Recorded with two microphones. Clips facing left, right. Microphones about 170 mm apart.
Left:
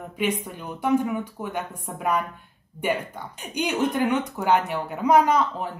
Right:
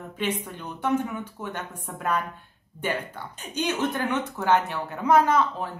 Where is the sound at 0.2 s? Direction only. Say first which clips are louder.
Left 3 dB; 10° left (ahead or behind).